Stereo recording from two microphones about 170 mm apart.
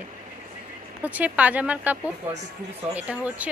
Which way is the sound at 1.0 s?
10° right (ahead or behind).